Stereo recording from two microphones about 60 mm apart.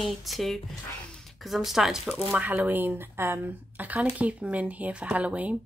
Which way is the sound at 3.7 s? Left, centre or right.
Right.